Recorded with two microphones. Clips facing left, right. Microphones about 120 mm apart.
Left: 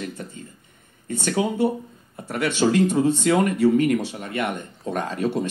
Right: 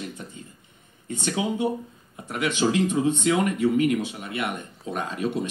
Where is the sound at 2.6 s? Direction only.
45° left (ahead or behind).